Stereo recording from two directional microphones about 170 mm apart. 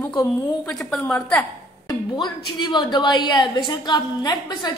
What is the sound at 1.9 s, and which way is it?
A woman's voice, 25° left (ahead or behind).